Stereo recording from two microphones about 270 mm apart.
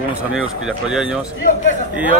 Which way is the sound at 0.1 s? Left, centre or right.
Centre.